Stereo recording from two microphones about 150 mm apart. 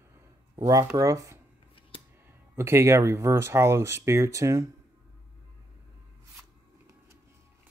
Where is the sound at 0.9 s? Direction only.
20° right (ahead or behind).